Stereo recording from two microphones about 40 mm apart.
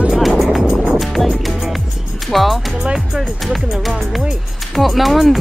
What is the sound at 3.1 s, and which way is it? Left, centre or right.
Speech, centre.